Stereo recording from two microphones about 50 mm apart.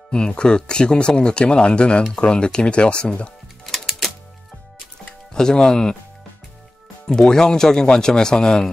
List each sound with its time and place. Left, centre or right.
0.1 s speech: centre
3.6 s music: centre
5.3 s speech: centre
7.1 s speech: centre